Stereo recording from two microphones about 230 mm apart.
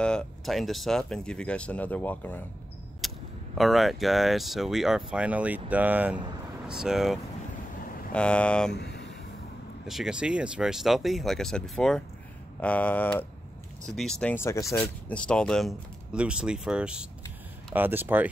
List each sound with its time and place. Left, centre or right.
0.0 s speech: centre
3.0 s single-lens reflex camera: centre
3.5 s speech: centre
8.7 s a sound: left
9.8 s speech: centre